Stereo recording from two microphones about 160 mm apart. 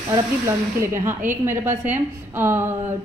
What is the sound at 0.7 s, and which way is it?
A woman's voice, 15° right (ahead or behind).